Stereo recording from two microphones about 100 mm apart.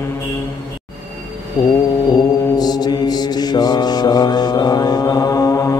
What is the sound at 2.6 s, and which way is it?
Mantra, 45° left (ahead or behind).